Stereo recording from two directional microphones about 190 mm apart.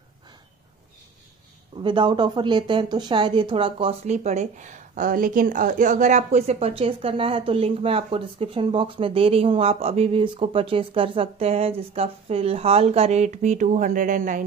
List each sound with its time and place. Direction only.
1.8 s speech: 25° right (ahead or behind); by 14.4 s 45° right (ahead or behind)